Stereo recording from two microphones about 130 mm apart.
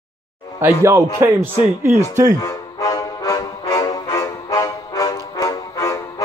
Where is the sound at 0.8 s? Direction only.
20° right (ahead or behind).